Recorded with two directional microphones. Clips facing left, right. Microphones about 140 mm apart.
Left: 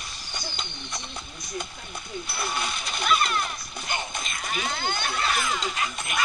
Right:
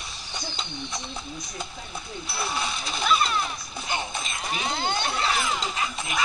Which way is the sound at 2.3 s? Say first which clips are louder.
Right 2 dB; 5° right (ahead or behind).